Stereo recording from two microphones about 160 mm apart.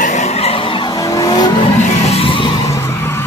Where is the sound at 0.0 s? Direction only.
40° left (ahead or behind).